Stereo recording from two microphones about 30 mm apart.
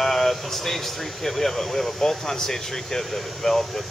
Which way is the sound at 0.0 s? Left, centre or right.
Centre.